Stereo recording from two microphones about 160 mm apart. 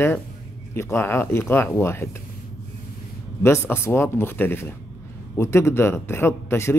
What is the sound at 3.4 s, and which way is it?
Speech, 15° left (ahead or behind).